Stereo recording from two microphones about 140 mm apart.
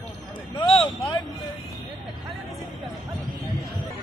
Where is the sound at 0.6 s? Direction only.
40° left (ahead or behind).